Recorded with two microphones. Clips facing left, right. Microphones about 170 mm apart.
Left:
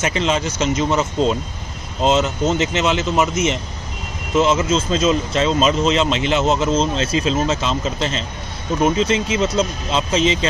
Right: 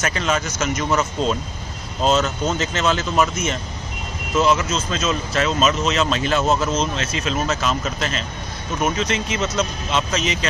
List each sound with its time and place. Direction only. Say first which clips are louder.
0.0 s speech: left 3 dB; 25° left (ahead or behind)
4.4 s speech: left 3 dB; 25° left (ahead or behind)